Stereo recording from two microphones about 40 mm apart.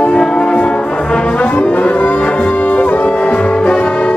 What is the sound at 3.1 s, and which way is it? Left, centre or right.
Music, left.